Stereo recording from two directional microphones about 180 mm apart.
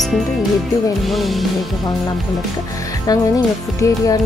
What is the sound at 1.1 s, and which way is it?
Music, centre (ahead or behind).